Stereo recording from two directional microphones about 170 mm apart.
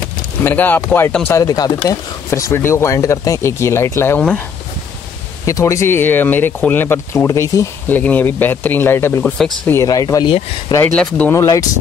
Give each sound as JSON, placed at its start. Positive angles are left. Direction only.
{"t": 0.4, "sound": "speech", "side_deg": 10}
{"t": 5.4, "sound": "speech", "side_deg": 20}
{"t": 11.0, "sound": "speech", "side_deg": 10}
{"t": 11.3, "sound": "speech", "side_deg": 20}